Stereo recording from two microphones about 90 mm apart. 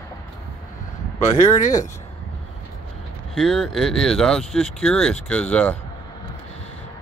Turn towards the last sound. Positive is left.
turn(degrees=15)  # may be behind; listen again after turning